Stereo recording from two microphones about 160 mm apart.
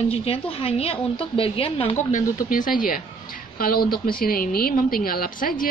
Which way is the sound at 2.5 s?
55° left (ahead or behind).